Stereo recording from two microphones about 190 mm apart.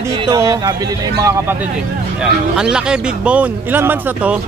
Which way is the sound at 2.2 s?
5° right (ahead or behind).